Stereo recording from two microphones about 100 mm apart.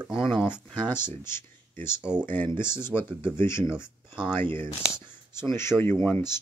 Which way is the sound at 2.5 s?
25° left (ahead or behind).